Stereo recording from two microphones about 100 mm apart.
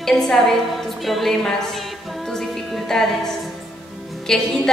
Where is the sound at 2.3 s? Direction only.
5° left (ahead or behind).